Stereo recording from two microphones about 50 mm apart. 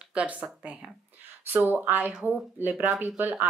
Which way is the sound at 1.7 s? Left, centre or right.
Right.